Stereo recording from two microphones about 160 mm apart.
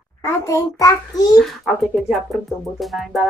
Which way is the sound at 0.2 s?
20° left (ahead or behind).